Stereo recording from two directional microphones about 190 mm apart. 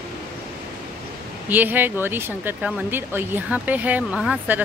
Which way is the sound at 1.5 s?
10° right (ahead or behind).